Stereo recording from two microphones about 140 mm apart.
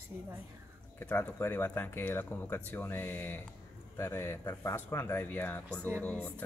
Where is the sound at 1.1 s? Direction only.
15° left (ahead or behind).